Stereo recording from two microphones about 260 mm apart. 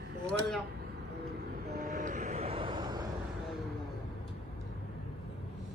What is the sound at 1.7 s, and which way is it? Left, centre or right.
Vehicle, right.